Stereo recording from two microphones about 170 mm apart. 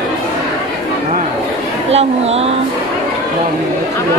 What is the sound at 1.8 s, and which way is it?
Speech, 40° right (ahead or behind).